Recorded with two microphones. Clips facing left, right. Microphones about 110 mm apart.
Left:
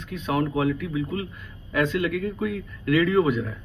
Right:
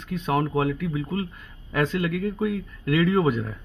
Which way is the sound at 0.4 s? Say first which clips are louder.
Left 2 dB; 35° right (ahead or behind).